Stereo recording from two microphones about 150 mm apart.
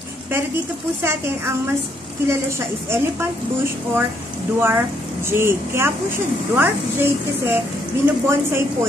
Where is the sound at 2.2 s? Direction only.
15° right (ahead or behind).